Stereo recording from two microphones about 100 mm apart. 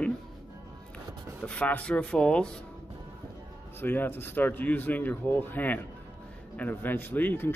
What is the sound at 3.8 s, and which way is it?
Speech, 20° left (ahead or behind).